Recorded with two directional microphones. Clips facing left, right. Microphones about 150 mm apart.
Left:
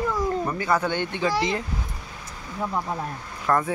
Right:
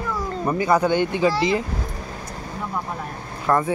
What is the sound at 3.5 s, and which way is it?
Speech, 10° right (ahead or behind).